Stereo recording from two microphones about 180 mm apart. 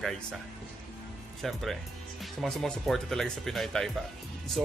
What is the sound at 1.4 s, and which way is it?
Speech, centre (ahead or behind).